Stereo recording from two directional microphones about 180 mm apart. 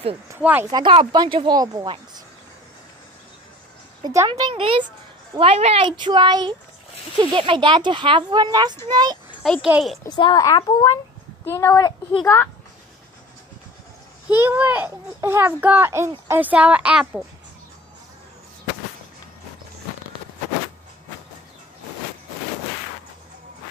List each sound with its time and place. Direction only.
0.3 s speech: 10° right (ahead or behind)
0.7 s speech: 20° right (ahead or behind)
4.0 s speech: 20° right (ahead or behind)
9.4 s speech: centre (ahead or behind)
10.0 s a child's voice: 25° left (ahead or behind)
14.3 s speech: 10° right (ahead or behind)